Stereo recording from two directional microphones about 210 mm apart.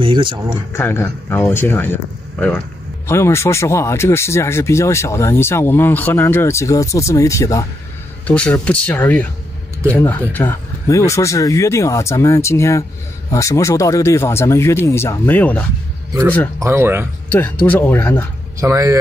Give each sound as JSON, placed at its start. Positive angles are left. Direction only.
{"t": 0.0, "sound": "speech", "side_deg": -25}
{"t": 0.7, "sound": "speech", "side_deg": 10}
{"t": 16.6, "sound": "speech", "side_deg": -10}
{"t": 17.3, "sound": "speech", "side_deg": 10}
{"t": 18.6, "sound": "speech", "side_deg": -15}